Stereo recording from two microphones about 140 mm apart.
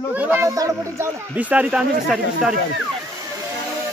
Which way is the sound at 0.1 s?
15° right (ahead or behind).